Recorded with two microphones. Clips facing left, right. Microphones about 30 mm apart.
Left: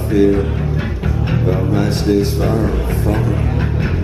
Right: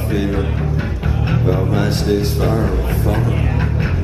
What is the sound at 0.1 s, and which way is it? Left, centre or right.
Speech, centre.